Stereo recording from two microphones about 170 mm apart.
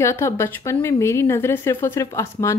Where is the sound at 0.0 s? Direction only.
15° left (ahead or behind).